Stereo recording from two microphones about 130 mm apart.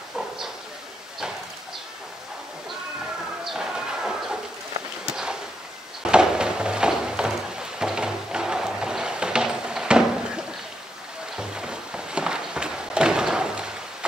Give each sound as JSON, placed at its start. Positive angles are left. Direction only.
{"t": 3.4, "sound": "bird", "side_deg": -5}
{"t": 5.0, "sound": "a sound", "side_deg": -5}
{"t": 11.3, "sound": "music", "side_deg": -5}